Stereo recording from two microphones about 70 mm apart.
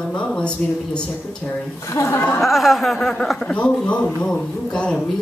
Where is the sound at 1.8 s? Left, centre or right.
Left.